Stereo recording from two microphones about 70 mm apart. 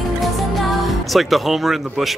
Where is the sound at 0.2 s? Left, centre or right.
Centre.